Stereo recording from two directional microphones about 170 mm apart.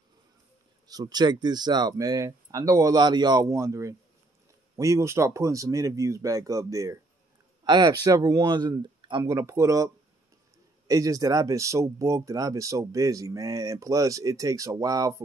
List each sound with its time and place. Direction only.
0.8 s speech: 25° right (ahead or behind)
10.9 s speech: 20° right (ahead or behind)